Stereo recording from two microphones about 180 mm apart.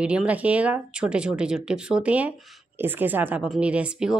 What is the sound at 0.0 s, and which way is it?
A woman's voice, 5° right (ahead or behind).